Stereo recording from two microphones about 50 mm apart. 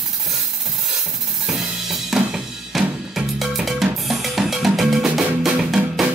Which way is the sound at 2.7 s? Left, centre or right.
Centre.